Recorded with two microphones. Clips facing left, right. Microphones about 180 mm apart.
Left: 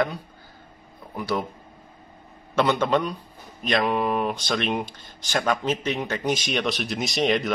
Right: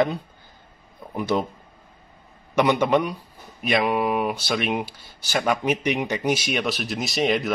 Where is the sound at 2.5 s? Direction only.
15° right (ahead or behind).